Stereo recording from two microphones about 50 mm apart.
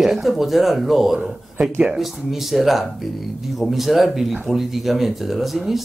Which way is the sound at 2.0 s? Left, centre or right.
Centre.